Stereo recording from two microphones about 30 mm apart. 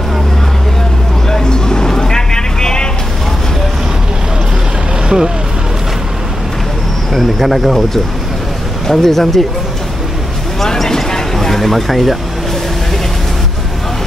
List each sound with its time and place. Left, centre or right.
1.3 s a sound: left
1.9 s vehicle: left
7.1 s speech: centre
8.8 s speech: centre
10.6 s vehicle: centre
11.3 s speech: centre